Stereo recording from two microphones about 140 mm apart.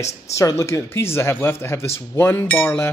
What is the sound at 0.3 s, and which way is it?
Speech, 20° left (ahead or behind).